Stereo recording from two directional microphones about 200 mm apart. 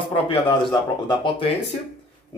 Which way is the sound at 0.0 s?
25° left (ahead or behind).